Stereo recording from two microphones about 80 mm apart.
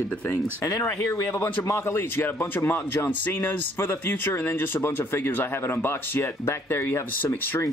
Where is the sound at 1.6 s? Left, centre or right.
Left.